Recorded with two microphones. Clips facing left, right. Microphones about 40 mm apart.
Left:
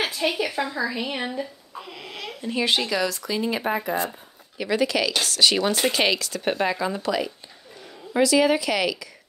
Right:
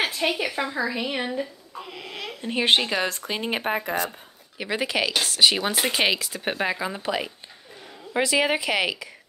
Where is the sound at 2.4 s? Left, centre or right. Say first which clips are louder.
Right 2 dB; right.